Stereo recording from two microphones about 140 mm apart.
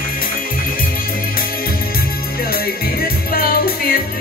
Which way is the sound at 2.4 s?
90° left.